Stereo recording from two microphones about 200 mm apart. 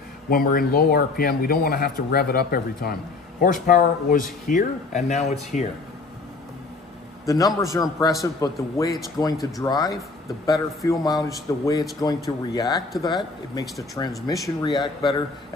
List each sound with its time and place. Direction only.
0.3 s speech: 45° left (ahead or behind)
7.2 s a man's voice: 15° left (ahead or behind)